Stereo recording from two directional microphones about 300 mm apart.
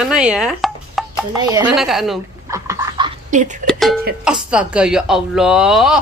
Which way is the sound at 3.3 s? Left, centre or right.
Right.